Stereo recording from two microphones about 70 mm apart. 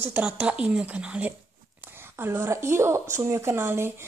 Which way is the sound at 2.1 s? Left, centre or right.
Right.